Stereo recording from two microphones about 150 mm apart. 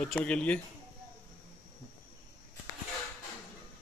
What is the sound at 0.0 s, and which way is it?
Speech, 5° left (ahead or behind).